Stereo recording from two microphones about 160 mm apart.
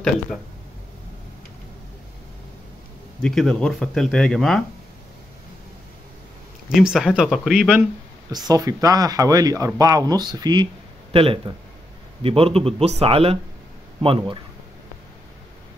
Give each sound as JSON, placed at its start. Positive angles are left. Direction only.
{"t": 3.2, "sound": "speech", "side_deg": 5}
{"t": 6.7, "sound": "speech", "side_deg": 0}
{"t": 8.3, "sound": "a man's voice", "side_deg": -25}